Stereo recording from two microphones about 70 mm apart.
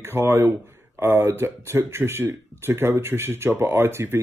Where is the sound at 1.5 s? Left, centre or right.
Right.